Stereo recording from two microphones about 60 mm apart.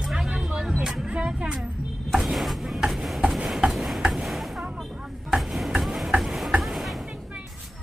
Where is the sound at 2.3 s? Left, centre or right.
Centre.